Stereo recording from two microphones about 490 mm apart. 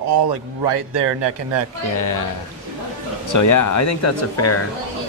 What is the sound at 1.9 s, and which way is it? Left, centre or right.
Speech, left.